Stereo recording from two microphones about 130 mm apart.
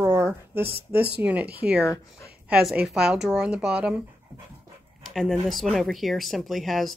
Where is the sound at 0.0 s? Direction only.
20° right (ahead or behind).